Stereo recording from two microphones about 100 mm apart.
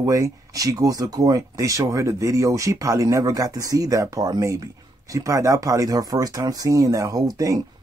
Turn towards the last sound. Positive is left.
turn(degrees=-35)  # may be behind; listen again after turning